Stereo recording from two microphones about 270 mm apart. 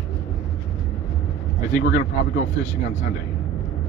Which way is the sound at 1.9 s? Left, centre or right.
Left.